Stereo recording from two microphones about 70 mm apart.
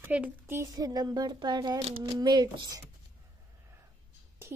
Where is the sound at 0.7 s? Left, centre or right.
Right.